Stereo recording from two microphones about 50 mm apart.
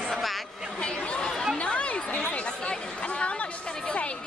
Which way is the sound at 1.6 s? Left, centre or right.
Left.